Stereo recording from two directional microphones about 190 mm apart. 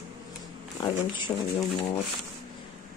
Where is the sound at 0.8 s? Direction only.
25° left (ahead or behind).